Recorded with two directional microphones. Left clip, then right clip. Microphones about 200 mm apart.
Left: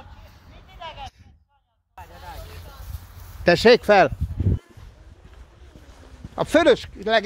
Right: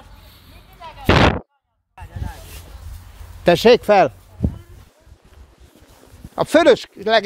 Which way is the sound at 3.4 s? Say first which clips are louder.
Right 3 dB; 10° right (ahead or behind).